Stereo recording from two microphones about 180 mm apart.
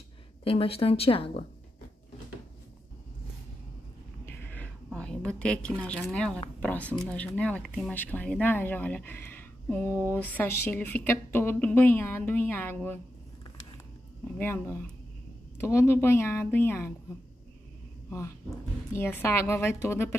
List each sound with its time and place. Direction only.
0.4 s a woman's voice: 30° left (ahead or behind)
4.3 s a sound: 10° left (ahead or behind)
5.4 s a woman's voice: 5° left (ahead or behind)
14.2 s speech: 10° left (ahead or behind)
18.9 s speech: 15° left (ahead or behind)